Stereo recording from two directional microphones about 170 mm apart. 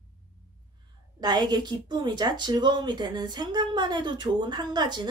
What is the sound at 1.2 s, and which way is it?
Speech, 25° right (ahead or behind).